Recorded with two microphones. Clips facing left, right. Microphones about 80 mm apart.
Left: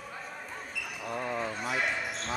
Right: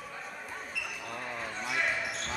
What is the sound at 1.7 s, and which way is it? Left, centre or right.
Basketball bounce, centre.